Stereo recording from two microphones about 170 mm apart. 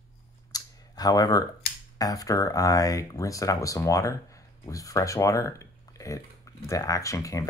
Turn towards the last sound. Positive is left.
turn(degrees=20)  # may be behind; listen again after turning